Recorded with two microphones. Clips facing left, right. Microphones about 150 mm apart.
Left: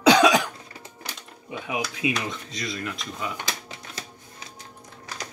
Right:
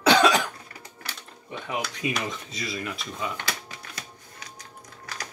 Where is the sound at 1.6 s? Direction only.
5° left (ahead or behind).